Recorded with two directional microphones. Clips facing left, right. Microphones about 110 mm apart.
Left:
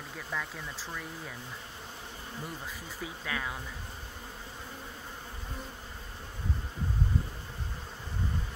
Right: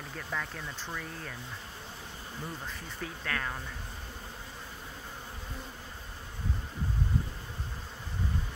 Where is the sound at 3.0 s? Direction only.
10° left (ahead or behind).